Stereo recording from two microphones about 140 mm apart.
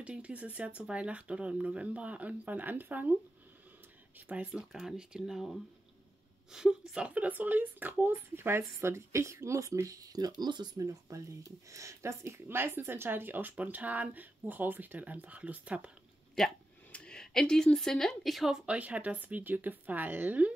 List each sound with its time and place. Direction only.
0.0 s speech: 10° right (ahead or behind)
4.3 s speech: 10° right (ahead or behind)
16.3 s speech: 5° left (ahead or behind); by 20.5 s 10° right (ahead or behind)